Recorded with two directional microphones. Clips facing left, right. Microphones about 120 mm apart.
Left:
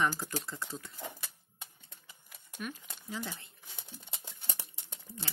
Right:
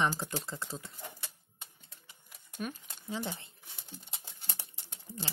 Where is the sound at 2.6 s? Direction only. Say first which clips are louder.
Right 2 dB; 35° right (ahead or behind).